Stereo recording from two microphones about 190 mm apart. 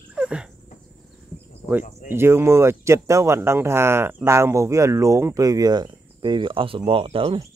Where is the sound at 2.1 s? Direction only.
10° right (ahead or behind); by 7.5 s 30° right (ahead or behind).